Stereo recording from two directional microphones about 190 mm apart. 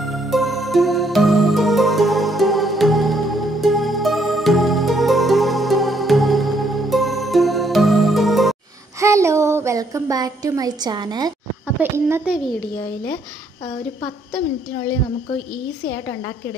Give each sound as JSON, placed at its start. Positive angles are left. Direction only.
{"t": 0.3, "sound": "music", "side_deg": 0}
{"t": 9.0, "sound": "a woman's voice", "side_deg": -15}
{"t": 11.6, "sound": "speech", "side_deg": -10}